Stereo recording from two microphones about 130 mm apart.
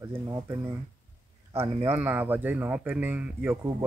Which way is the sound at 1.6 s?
50° right (ahead or behind).